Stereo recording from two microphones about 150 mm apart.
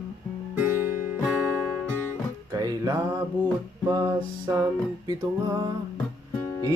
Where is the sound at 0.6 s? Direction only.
10° right (ahead or behind).